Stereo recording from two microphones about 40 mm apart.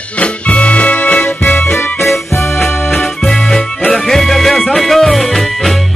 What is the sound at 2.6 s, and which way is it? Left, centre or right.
Music, centre.